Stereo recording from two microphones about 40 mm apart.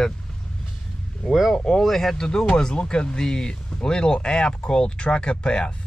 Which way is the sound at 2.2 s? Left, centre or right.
Left.